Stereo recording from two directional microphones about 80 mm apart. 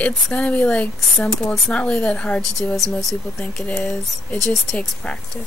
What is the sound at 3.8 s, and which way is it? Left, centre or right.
Speech, centre.